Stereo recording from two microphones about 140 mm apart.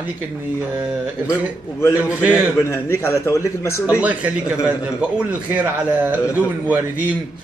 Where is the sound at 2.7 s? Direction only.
20° left (ahead or behind).